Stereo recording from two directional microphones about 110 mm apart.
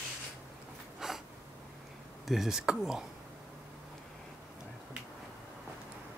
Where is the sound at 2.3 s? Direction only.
5° right (ahead or behind).